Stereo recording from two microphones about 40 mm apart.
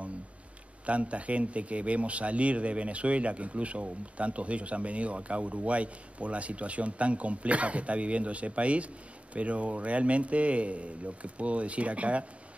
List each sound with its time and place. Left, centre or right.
0.8 s speech: right